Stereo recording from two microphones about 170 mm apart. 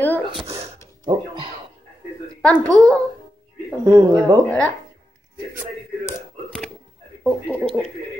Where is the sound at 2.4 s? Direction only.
5° left (ahead or behind).